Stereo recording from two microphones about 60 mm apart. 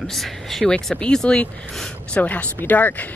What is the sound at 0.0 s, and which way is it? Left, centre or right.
Speech, centre.